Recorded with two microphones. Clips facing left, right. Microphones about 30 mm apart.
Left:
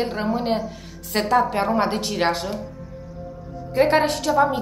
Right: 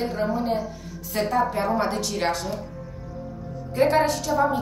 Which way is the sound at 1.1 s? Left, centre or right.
Left.